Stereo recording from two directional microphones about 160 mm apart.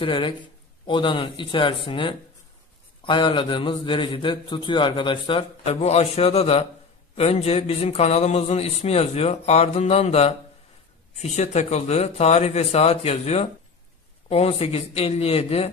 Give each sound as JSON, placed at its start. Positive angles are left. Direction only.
{"t": 0.0, "sound": "a man's voice", "side_deg": 30}